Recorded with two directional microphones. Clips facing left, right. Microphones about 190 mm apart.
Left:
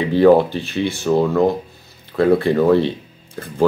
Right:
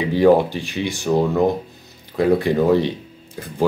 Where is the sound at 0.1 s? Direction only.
15° right (ahead or behind).